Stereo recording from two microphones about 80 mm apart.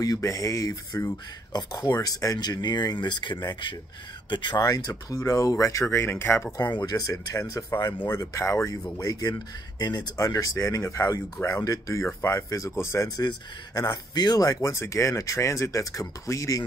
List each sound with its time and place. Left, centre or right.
0.0 s speech: left
1.1 s speech: left
2.3 s speech: left
4.6 s speech: left
6.5 s speech: left
7.3 s speech: left
8.9 s speech: left
9.8 s speech: left
13.7 s speech: left